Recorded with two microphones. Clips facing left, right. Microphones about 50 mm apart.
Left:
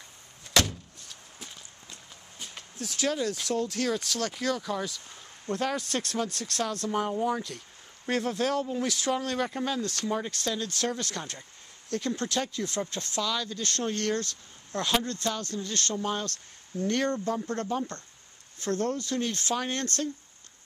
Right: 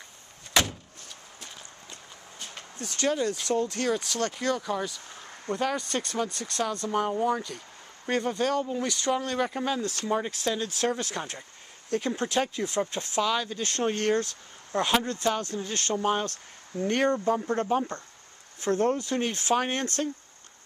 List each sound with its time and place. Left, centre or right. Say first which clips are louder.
0.5 s vehicle: even; centre
2.8 s speech: right 2 dB; centre; by 19.6 s right